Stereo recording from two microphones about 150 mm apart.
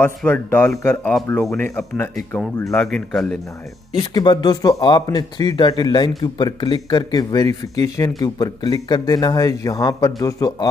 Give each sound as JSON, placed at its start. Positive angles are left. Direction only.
{"t": 0.0, "sound": "speech", "side_deg": 10}
{"t": 1.4, "sound": "speech", "side_deg": 5}
{"t": 4.1, "sound": "speech", "side_deg": 30}